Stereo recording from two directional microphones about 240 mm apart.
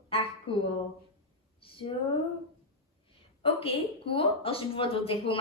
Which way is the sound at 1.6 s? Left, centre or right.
Left.